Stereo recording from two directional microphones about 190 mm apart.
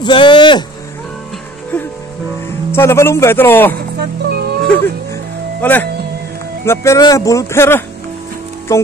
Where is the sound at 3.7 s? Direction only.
55° right (ahead or behind).